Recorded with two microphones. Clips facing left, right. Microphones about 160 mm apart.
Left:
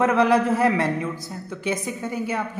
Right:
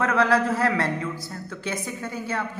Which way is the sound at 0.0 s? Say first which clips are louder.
Left 3 dB; 20° left (ahead or behind).